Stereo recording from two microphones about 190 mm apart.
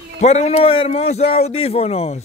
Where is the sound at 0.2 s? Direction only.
35° left (ahead or behind).